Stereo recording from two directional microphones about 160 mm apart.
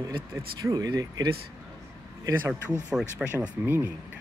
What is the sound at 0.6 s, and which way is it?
Speech, 25° right (ahead or behind).